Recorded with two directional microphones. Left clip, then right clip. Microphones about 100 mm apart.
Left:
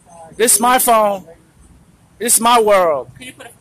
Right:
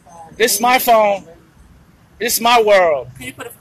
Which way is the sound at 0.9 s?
90° left.